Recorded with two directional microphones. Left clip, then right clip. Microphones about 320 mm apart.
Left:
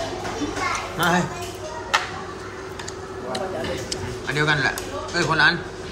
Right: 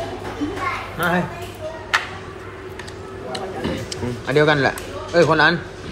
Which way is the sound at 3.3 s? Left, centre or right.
Centre.